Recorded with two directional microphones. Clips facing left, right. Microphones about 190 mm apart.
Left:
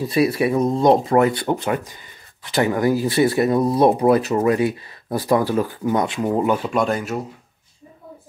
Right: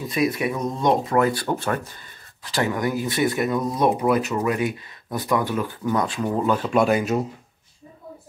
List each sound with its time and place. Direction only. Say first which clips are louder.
0.0 s speech: left 5 dB; 30° left (ahead or behind); by 2.0 s 15° left (ahead or behind)
2.5 s speech: left 5 dB; 25° left (ahead or behind)
5.9 s speech: left 1 dB; 20° left (ahead or behind)
6.7 s speech: right 2 dB; 5° right (ahead or behind)